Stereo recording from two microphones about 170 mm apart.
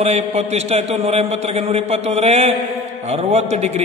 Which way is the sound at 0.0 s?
40° right (ahead or behind).